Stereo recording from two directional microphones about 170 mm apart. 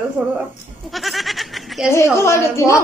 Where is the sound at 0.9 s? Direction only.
Centre (ahead or behind).